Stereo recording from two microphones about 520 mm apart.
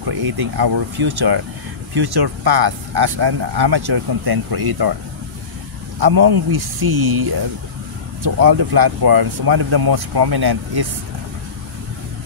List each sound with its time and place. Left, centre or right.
0.0 s speech: right
5.9 s speech: right